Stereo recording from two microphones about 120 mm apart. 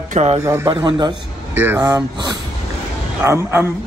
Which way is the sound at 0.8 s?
35° right (ahead or behind).